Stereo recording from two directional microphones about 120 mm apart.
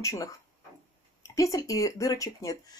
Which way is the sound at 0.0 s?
25° left (ahead or behind).